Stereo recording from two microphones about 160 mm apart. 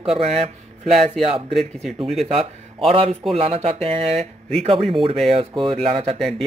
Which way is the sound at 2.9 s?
35° right (ahead or behind).